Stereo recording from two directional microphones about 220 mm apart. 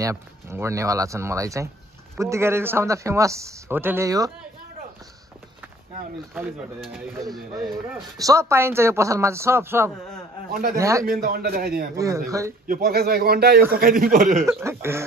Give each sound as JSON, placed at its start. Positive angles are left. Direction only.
{"t": 0.0, "sound": "speech", "side_deg": -15}
{"t": 7.5, "sound": "speech", "side_deg": -15}
{"t": 10.5, "sound": "a man's voice", "side_deg": -40}
{"t": 10.8, "sound": "speech", "side_deg": -15}
{"t": 11.1, "sound": "a man's voice", "side_deg": -40}
{"t": 11.9, "sound": "speech", "side_deg": -15}
{"t": 12.6, "sound": "a man's voice", "side_deg": -40}
{"t": 14.4, "sound": "speech", "side_deg": -10}